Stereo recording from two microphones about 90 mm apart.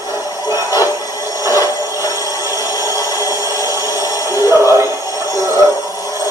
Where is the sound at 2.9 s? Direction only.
40° left (ahead or behind).